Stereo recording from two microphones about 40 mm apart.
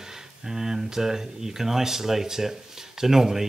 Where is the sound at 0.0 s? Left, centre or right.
Centre.